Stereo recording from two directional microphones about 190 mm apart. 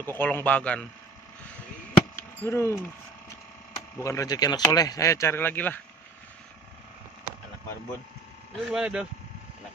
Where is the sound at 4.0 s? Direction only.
15° left (ahead or behind).